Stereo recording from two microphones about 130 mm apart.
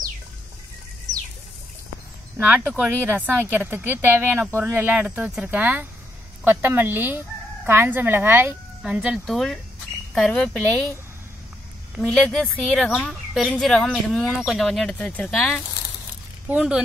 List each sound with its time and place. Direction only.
2.3 s speech: 15° right (ahead or behind); by 10.6 s 10° left (ahead or behind)
12.0 s speech: 5° left (ahead or behind)
16.4 s speech: 10° right (ahead or behind)